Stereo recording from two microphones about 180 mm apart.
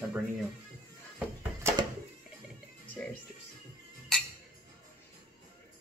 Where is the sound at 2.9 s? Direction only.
10° left (ahead or behind).